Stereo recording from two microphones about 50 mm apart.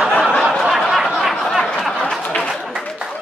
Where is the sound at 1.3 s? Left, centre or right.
Centre.